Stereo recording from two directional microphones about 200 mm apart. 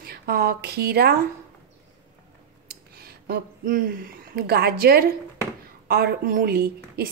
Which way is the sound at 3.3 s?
45° right (ahead or behind).